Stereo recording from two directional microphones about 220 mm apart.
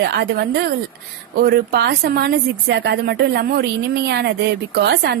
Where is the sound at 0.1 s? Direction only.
45° right (ahead or behind).